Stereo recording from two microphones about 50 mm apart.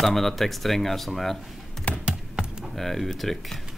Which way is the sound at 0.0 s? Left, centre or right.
Centre.